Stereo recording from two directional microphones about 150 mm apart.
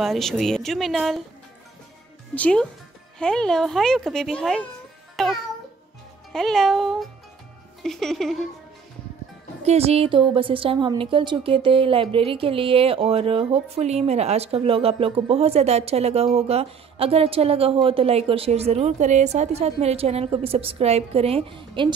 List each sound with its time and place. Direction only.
0.0 s speech: centre (ahead or behind)
2.3 s speech: 5° left (ahead or behind)
5.1 s music: centre (ahead or behind)
6.3 s speech: 5° left (ahead or behind)
9.7 s a woman's voice: 45° right (ahead or behind)